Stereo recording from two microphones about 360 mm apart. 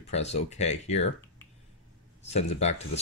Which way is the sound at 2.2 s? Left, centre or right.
Centre.